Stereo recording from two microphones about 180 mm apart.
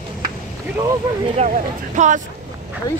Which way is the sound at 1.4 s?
40° right (ahead or behind).